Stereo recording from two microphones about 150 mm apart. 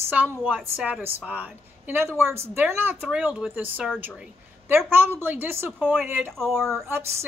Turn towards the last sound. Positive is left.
turn(degrees=-15)  # may be behind; listen again after turning